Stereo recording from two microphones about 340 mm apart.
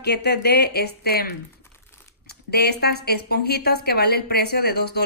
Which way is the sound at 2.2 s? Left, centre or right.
Left.